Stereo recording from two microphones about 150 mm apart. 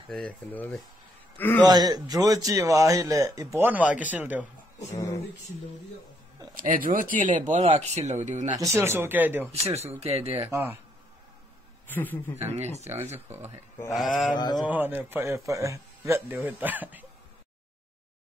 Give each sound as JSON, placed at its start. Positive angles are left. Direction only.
{"t": 0.1, "sound": "speech", "side_deg": 10}
{"t": 1.6, "sound": "a man's voice", "side_deg": -25}
{"t": 4.9, "sound": "mantra", "side_deg": 25}
{"t": 6.5, "sound": "speech", "side_deg": -65}
{"t": 8.5, "sound": "a man's voice", "side_deg": -20}
{"t": 9.7, "sound": "speech", "side_deg": -45}
{"t": 10.5, "sound": "a man's voice", "side_deg": -15}
{"t": 11.9, "sound": "speech", "side_deg": 10}
{"t": 13.9, "sound": "mantra", "side_deg": 0}
{"t": 14.3, "sound": "mantra", "side_deg": 30}
{"t": 14.6, "sound": "a man's voice", "side_deg": -10}